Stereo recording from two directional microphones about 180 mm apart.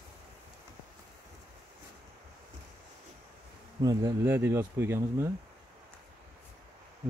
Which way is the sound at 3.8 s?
20° right (ahead or behind).